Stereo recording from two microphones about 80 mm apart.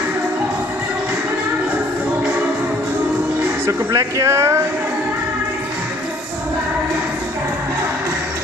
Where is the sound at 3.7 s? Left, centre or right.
Right.